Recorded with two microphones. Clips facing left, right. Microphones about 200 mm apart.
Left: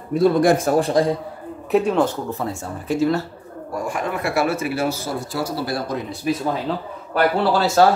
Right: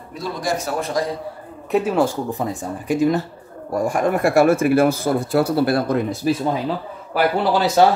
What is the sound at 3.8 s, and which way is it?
Speech, 45° right (ahead or behind).